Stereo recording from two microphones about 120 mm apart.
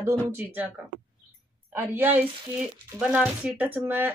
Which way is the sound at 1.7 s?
15° right (ahead or behind).